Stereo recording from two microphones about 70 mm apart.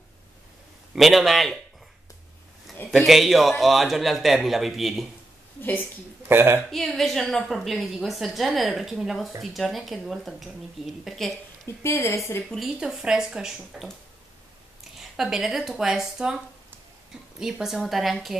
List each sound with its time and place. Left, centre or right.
0.9 s a woman's voice: centre
2.9 s a woman's voice: centre
5.6 s a woman's voice: left
6.2 s speech: right
6.7 s a woman's voice: centre
11.6 s a woman's voice: left
12.5 s speech: centre
15.0 s speech: centre
17.4 s a woman's voice: centre